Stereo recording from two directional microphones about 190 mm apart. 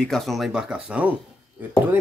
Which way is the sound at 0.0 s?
Centre (ahead or behind).